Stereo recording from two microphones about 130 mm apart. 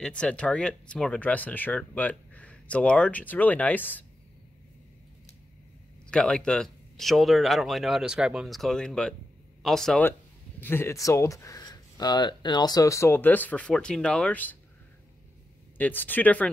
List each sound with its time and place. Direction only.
0.0 s speech: 10° left (ahead or behind)
6.0 s speech: 5° left (ahead or behind)
10.6 s speech: 15° left (ahead or behind)
15.8 s speech: 15° left (ahead or behind)